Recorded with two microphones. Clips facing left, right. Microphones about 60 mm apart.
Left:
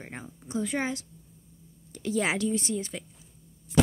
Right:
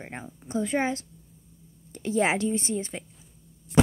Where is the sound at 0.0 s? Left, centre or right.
Right.